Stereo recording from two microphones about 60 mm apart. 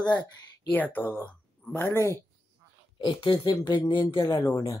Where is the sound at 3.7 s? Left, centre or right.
Left.